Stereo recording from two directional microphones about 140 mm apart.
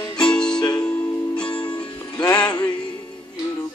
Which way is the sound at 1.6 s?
30° left (ahead or behind).